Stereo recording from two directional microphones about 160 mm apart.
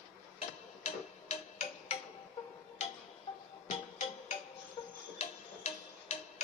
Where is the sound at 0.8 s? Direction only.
45° left (ahead or behind).